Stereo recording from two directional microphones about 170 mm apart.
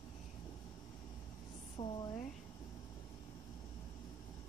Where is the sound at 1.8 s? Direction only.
25° left (ahead or behind).